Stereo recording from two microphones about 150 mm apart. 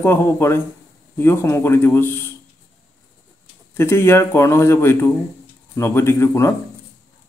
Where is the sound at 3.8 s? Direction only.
15° left (ahead or behind).